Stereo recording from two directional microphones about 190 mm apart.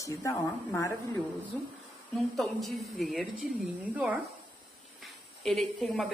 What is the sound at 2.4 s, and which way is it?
Speech, centre (ahead or behind).